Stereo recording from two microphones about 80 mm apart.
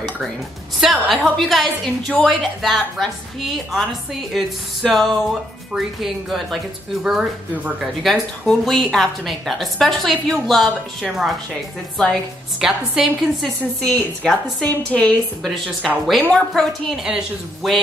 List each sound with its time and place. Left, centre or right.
1.1 s a woman's voice: centre
8.0 s a woman's voice: centre
13.8 s a woman's voice: centre
16.1 s a woman's voice: centre
16.9 s a woman's voice: centre